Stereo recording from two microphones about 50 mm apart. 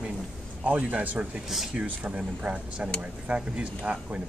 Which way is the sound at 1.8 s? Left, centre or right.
Right.